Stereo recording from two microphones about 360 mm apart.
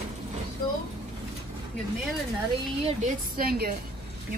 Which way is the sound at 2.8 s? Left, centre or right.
Right.